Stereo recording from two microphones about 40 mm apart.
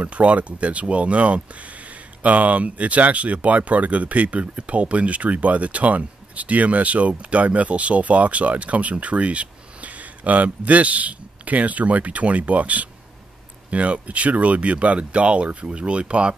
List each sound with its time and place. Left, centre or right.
0.0 s speech: right